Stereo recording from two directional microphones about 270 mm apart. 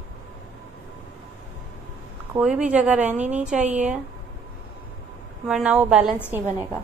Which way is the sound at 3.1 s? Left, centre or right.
Right.